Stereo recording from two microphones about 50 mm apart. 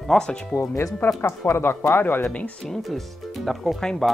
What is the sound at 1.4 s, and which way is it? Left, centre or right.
Speech, left.